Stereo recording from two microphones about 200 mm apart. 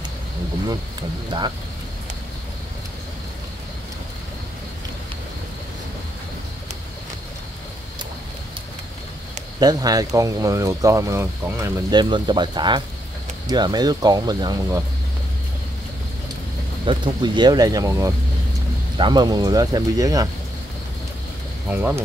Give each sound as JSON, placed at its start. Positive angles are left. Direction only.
{"t": 9.6, "sound": "speech", "side_deg": -20}
{"t": 16.8, "sound": "speech", "side_deg": -25}
{"t": 21.6, "sound": "speech", "side_deg": -10}